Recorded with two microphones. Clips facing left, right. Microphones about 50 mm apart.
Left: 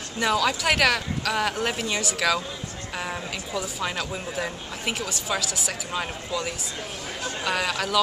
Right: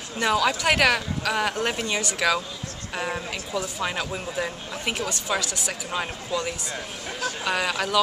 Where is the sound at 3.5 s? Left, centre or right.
Centre.